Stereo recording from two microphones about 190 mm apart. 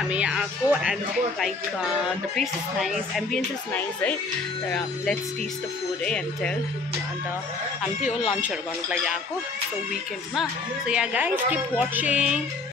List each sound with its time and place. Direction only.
0.1 s speech: 5° right (ahead or behind)
1.4 s music: centre (ahead or behind)
8.4 s music: 5° right (ahead or behind)
10.3 s a woman's voice: 5° right (ahead or behind)